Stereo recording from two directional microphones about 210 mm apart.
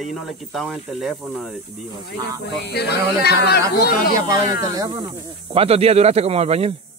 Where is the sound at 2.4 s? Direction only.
55° left (ahead or behind).